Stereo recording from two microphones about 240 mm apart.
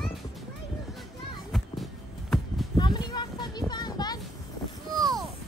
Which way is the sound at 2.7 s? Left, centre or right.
Centre.